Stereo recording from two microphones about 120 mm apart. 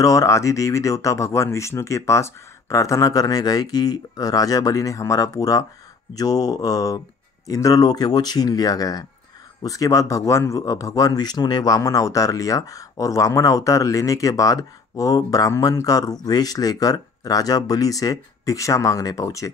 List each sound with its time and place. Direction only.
0.0 s speech: 25° left (ahead or behind)